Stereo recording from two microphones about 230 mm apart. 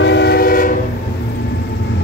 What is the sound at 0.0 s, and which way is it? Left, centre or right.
Train, left.